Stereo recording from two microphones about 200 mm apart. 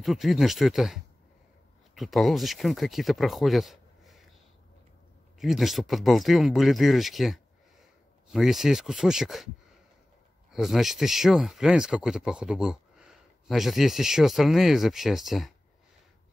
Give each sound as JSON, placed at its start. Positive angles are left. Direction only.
{"t": 0.0, "sound": "speech", "side_deg": 0}
{"t": 5.4, "sound": "speech", "side_deg": 0}
{"t": 10.5, "sound": "speech", "side_deg": 0}